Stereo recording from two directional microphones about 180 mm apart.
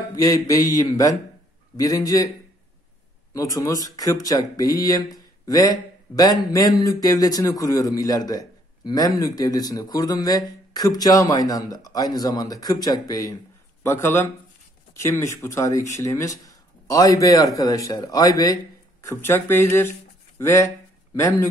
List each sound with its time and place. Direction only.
0.1 s speech: 20° left (ahead or behind)
3.3 s speech: 20° left (ahead or behind)